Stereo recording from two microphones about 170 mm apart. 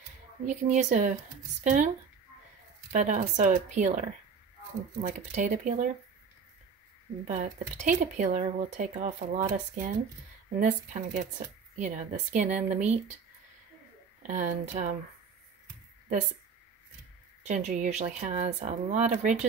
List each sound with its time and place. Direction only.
0.5 s speech: 45° right (ahead or behind)
2.9 s speech: 45° right (ahead or behind)
5.0 s speech: 45° right (ahead or behind)
7.2 s speech: 45° right (ahead or behind)
10.6 s speech: 45° right (ahead or behind)
14.2 s speech: 50° right (ahead or behind)
17.4 s speech: 45° right (ahead or behind)